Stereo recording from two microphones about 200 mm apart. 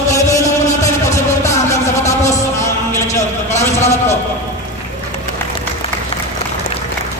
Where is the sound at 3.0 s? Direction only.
35° left (ahead or behind).